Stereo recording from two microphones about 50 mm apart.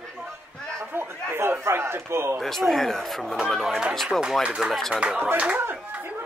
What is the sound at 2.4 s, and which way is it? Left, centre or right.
Speech, centre.